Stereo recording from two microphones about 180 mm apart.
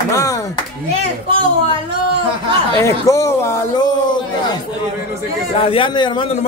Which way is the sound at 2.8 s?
15° left (ahead or behind).